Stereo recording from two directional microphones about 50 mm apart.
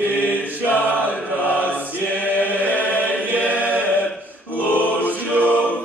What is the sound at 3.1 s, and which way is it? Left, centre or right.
Choir, right.